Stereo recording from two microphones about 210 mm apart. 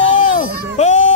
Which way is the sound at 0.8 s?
35° left (ahead or behind).